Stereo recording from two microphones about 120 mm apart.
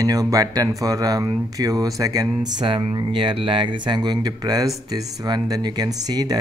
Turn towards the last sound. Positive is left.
turn(degrees=-35)  # may be behind; listen again after turning